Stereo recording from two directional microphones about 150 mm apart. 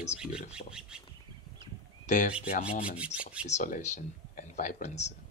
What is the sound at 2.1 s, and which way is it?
Speech, 55° left (ahead or behind).